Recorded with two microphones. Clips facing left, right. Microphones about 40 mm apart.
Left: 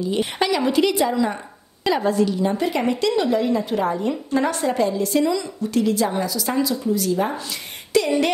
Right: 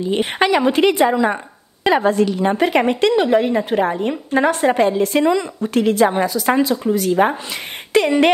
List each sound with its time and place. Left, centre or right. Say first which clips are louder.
0.0 s a woman's voice: right 4 dB; right